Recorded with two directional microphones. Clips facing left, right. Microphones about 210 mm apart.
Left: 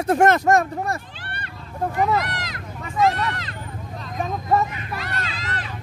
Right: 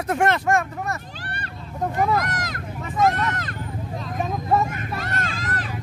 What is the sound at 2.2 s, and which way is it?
Speech, 45° right (ahead or behind).